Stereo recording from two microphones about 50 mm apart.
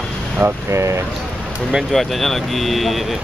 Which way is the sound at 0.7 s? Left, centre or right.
Right.